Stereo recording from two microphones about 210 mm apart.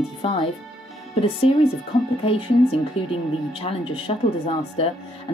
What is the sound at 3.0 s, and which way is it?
A woman's voice, 25° left (ahead or behind).